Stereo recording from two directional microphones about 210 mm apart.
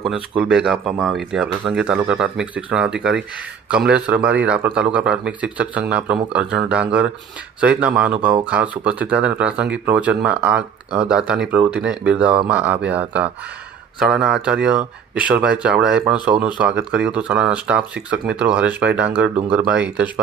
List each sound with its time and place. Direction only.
0.4 s a man's voice: 5° right (ahead or behind)